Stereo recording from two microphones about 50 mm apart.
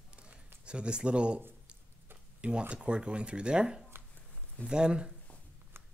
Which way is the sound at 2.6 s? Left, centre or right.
Right.